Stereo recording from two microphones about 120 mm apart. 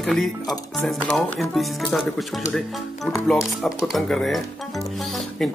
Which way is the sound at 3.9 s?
Centre (ahead or behind).